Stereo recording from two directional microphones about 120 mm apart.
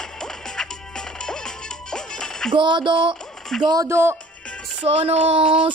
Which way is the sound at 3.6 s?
30° right (ahead or behind).